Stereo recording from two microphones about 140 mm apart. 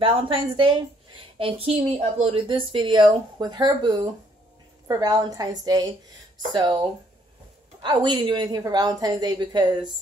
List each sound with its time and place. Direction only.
0.0 s a woman's voice: 40° right (ahead or behind)